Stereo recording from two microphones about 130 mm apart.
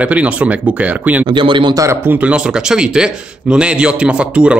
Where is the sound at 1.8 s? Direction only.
20° right (ahead or behind).